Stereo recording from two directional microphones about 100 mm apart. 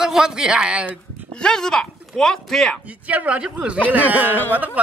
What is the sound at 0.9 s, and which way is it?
Speech, 10° left (ahead or behind).